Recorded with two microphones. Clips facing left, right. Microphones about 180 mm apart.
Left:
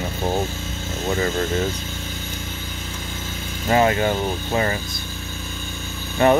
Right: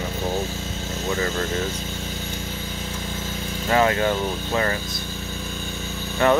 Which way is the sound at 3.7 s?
20° left (ahead or behind).